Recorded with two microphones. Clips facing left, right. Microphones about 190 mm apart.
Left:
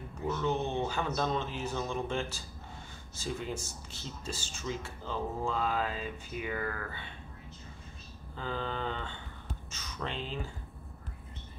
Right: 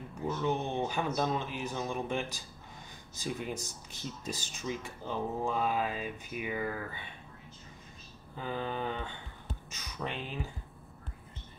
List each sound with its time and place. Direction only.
0.3 s speech: 15° right (ahead or behind)
8.4 s speech: 15° right (ahead or behind)